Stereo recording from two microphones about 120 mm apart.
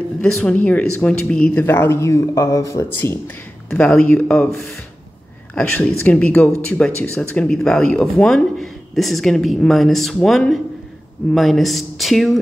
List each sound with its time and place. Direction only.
0.2 s speech: 5° left (ahead or behind); by 3.2 s 20° left (ahead or behind)
3.7 s speech: 10° left (ahead or behind)